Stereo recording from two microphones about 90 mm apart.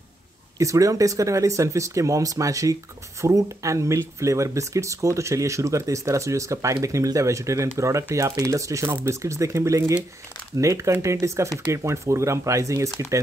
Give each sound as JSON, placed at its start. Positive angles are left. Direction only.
{"t": 0.6, "sound": "speech", "side_deg": -40}